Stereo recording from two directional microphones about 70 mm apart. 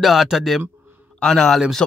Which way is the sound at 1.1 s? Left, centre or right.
Centre.